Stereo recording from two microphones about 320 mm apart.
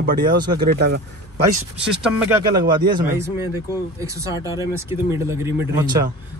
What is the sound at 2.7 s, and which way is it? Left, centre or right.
Speech, centre.